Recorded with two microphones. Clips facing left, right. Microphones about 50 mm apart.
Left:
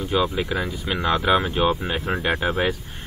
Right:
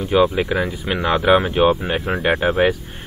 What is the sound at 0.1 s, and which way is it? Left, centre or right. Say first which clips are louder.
Speech: right 7 dB; right.